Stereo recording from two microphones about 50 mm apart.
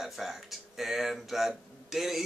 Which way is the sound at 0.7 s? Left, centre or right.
Centre.